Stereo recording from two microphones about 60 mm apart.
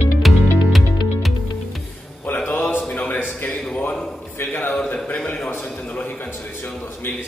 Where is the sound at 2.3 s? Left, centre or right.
Left.